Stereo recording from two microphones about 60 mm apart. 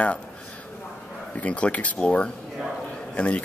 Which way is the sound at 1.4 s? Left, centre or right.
Left.